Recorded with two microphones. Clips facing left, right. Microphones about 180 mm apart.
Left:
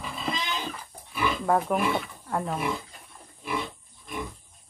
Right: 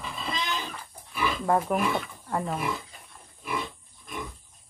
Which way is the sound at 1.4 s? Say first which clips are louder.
Even; centre (ahead or behind).